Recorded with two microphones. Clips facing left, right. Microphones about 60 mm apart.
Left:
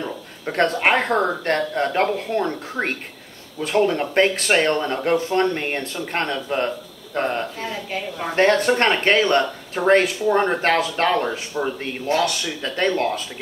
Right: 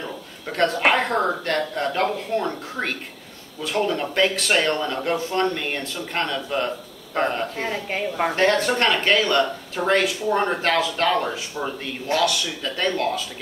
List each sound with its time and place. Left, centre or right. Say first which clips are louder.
0.5 s speech: left 1 dB; left
7.5 s speech: right 1 dB; right
8.4 s speech: left 4 dB; left